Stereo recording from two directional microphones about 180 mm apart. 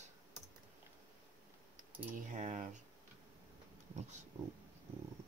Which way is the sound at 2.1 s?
40° right (ahead or behind).